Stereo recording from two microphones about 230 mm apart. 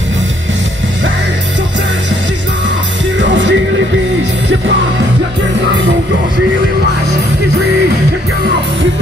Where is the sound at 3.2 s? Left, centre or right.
Right.